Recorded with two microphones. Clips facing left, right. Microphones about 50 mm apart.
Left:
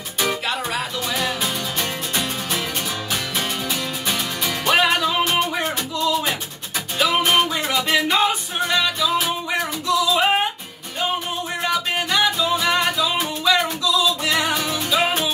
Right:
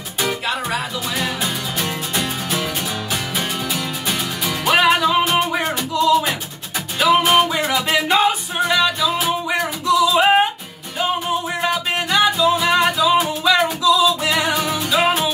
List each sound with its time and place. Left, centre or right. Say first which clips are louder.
0.2 s music: right 1 dB; centre
4.1 s music: right 1 dB; centre
11.6 s music: right 2 dB; centre